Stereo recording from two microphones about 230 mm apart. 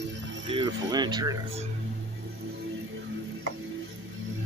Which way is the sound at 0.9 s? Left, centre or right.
Centre.